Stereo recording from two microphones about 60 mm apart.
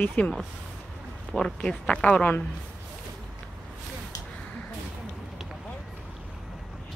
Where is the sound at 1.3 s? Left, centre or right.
Centre.